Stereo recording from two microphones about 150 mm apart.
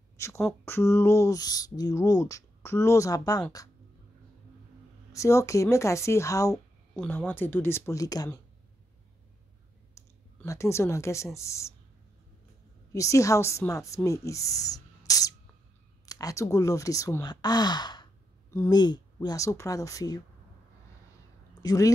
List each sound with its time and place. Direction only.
0.2 s speech: 20° left (ahead or behind)
5.1 s speech: 20° left (ahead or behind)
9.9 s clicking: 20° left (ahead or behind)
11.3 s speech: 20° left (ahead or behind)
12.9 s speech: 20° left (ahead or behind)
21.6 s speech: 25° left (ahead or behind)